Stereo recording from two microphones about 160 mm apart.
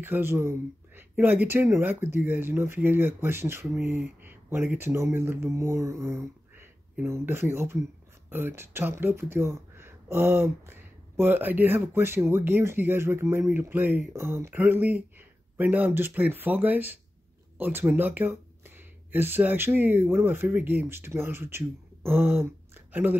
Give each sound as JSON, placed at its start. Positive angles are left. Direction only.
{"t": 0.0, "sound": "speech", "side_deg": -15}